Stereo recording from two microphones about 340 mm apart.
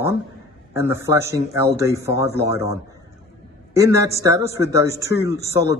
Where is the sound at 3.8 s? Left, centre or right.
Centre.